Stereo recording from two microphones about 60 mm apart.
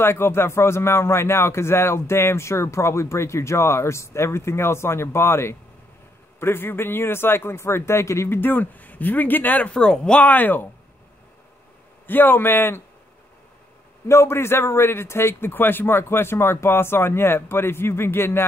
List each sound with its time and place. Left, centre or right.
0.0 s speech: left
8.3 s speech: left
9.8 s speech: centre
10.2 s a man's voice: left
12.1 s a man's voice: left
14.0 s speech: left